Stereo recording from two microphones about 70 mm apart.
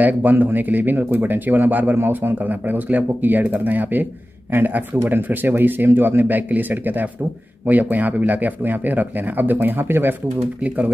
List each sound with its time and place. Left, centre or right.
0.0 s speech: right